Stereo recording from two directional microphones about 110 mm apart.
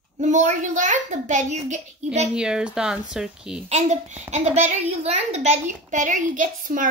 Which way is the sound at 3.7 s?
90° right.